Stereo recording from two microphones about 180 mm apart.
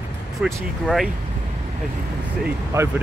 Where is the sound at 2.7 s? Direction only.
15° right (ahead or behind).